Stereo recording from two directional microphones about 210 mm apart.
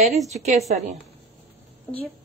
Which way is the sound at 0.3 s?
30° right (ahead or behind).